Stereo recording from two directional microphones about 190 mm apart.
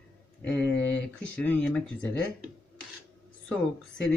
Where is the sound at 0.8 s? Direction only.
5° left (ahead or behind).